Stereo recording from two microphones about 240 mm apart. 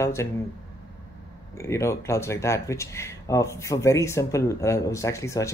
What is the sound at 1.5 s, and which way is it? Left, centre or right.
Speech, centre.